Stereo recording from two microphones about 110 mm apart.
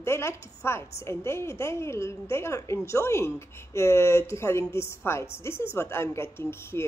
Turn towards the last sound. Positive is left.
turn(degrees=25)  # may be behind; listen again after turning